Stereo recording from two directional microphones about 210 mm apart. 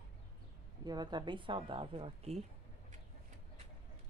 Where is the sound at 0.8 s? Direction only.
20° right (ahead or behind).